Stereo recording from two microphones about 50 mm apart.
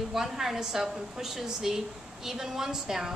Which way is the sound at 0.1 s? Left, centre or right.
Centre.